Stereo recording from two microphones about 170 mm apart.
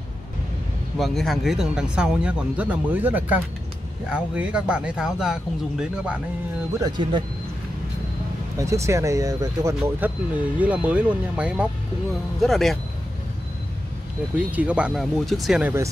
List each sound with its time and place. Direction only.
0.9 s speech: centre (ahead or behind)
6.8 s speech: 30° right (ahead or behind)
8.5 s speech: 15° right (ahead or behind); by 12.7 s centre (ahead or behind)
14.5 s speech: 10° right (ahead or behind)